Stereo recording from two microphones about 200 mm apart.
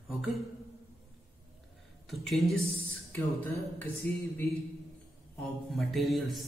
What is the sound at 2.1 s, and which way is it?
Speech, centre (ahead or behind).